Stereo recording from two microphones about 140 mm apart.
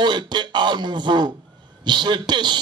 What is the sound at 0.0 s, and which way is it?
A man's voice, 30° right (ahead or behind).